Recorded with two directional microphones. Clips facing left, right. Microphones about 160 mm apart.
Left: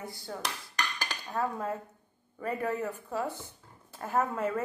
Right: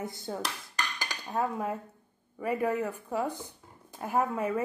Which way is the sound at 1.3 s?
15° right (ahead or behind).